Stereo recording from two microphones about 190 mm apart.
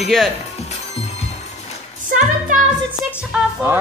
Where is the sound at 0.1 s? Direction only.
Centre (ahead or behind).